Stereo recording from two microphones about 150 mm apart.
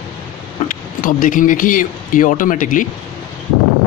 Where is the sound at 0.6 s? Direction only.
65° left (ahead or behind).